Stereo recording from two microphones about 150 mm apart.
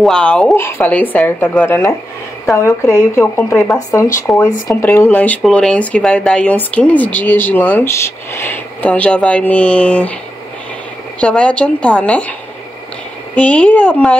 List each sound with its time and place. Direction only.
0.0 s speech: 5° left (ahead or behind)
11.1 s speech: 5° left (ahead or behind)